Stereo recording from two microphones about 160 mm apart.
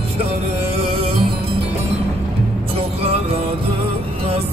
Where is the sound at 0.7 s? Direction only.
35° right (ahead or behind).